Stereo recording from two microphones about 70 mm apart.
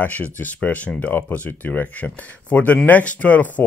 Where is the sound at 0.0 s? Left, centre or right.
Left.